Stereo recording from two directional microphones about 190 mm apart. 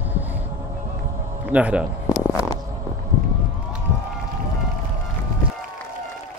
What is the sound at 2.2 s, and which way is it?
Stomach rumble, 20° left (ahead or behind).